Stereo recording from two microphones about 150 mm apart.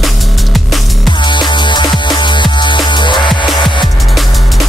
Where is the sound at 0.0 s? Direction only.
Centre (ahead or behind).